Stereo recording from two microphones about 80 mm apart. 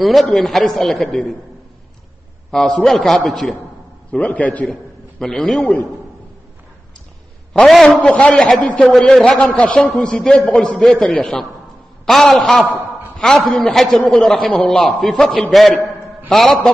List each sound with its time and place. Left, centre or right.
0.0 s a man's voice: centre
2.5 s a man's voice: centre
4.2 s a man's voice: centre
5.2 s a man's voice: centre
7.6 s a man's voice: centre
8.0 s a man's voice: centre
9.6 s a man's voice: centre